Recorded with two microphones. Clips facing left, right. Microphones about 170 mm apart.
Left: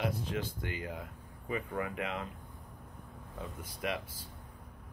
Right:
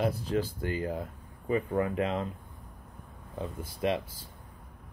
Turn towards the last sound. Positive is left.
turn(degrees=-25)  # may be behind; listen again after turning